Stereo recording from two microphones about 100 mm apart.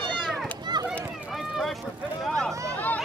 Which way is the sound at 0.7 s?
45° right (ahead or behind).